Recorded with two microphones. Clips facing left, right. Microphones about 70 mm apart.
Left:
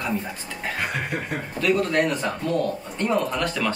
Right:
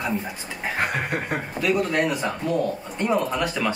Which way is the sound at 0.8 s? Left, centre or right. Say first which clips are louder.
Right 3 dB; right.